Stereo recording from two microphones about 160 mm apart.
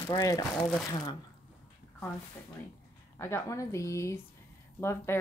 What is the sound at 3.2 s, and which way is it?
Speech, 15° left (ahead or behind).